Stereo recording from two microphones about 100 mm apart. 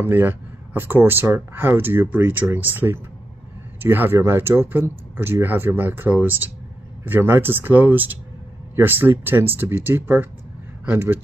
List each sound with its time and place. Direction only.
0.0 s speech: 20° right (ahead or behind)